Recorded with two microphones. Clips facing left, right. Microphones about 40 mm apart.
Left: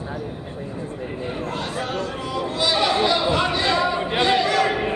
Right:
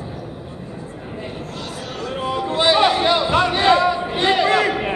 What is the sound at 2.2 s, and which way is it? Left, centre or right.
Chatter, right.